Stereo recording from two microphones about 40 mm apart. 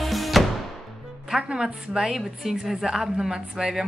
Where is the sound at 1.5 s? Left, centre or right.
Centre.